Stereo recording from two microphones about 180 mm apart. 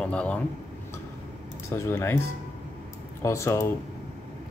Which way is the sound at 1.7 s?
15° left (ahead or behind).